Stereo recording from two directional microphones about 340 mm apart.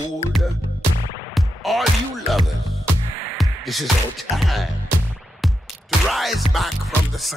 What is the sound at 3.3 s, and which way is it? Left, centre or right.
Music, centre.